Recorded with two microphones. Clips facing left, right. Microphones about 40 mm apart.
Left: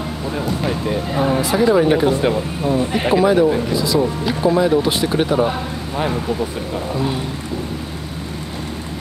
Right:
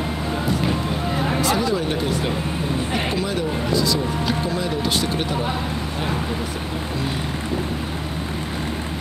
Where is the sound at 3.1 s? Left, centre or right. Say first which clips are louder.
Left 10 dB; centre.